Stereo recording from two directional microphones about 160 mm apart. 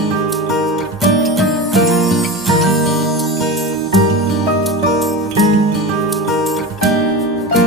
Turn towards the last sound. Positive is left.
turn(degrees=0)  # may be behind; listen again after turning